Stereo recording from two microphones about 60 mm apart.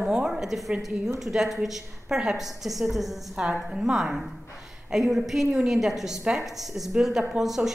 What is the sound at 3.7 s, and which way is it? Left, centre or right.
A woman's voice, centre.